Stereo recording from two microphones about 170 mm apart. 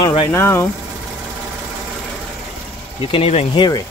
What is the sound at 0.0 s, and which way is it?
Speech, 30° left (ahead or behind).